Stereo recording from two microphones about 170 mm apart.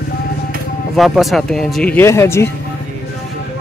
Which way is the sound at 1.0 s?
Centre (ahead or behind).